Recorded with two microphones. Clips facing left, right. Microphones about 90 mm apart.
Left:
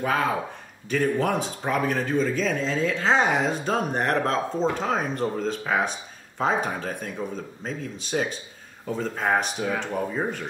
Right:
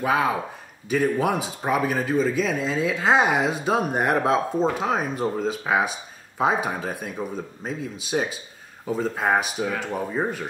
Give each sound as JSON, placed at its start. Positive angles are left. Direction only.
{"t": 0.0, "sound": "speech", "side_deg": -5}